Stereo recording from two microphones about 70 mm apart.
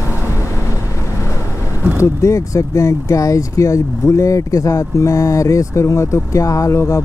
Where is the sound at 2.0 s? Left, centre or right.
Left.